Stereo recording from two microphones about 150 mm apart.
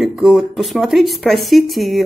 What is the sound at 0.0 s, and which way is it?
Speech, 5° right (ahead or behind).